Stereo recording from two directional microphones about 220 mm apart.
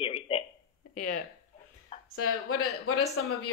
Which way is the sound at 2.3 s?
80° left.